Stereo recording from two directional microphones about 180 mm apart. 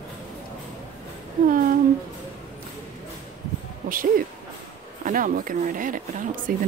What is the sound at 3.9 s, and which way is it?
Speech, 50° right (ahead or behind).